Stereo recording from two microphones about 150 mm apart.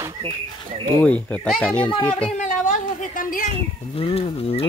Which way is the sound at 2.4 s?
65° left (ahead or behind).